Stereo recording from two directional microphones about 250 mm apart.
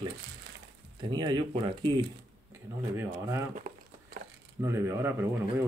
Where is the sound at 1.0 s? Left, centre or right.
Centre.